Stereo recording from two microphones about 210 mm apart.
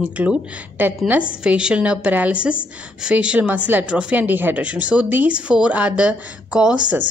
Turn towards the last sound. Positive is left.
turn(degrees=-5)  # may be behind; listen again after turning